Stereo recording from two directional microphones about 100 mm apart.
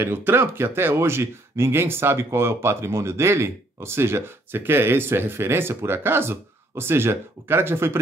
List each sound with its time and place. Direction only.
0.0 s speech: 20° right (ahead or behind)